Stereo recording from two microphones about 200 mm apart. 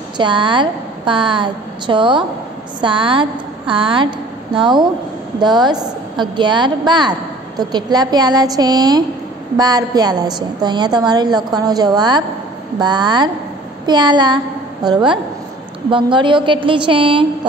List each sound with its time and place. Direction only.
0.2 s a woman's voice: 25° right (ahead or behind)